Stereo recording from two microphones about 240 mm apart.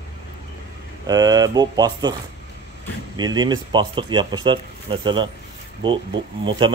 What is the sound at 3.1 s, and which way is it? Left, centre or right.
Speech, centre.